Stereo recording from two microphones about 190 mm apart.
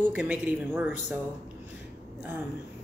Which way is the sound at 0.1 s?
10° right (ahead or behind).